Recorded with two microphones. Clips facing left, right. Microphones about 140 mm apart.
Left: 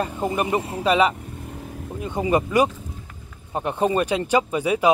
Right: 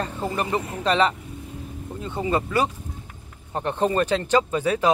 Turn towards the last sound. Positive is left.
turn(degrees=10)  # may be behind; listen again after turning